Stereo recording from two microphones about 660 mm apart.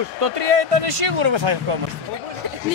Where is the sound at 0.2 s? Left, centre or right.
Right.